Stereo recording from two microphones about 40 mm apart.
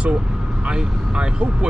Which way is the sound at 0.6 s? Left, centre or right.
Right.